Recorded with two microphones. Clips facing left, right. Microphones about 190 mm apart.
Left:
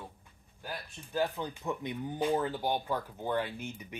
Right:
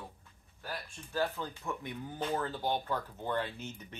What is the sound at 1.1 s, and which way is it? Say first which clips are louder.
Speech: left 2 dB; 15° left (ahead or behind).